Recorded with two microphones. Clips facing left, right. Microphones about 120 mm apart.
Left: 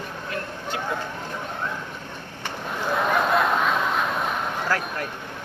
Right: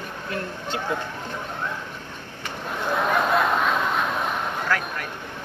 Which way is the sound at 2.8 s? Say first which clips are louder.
Even; centre (ahead or behind).